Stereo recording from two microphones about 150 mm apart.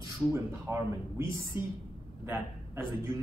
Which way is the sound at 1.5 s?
30° left (ahead or behind).